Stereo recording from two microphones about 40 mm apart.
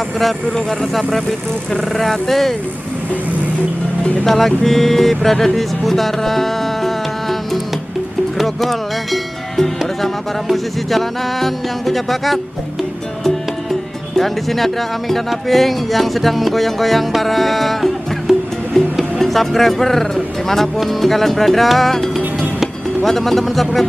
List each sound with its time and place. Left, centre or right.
2.0 s speech: centre
4.3 s music: centre
8.4 s speech: centre
14.1 s speech: centre
18.7 s music: centre
20.8 s speech: centre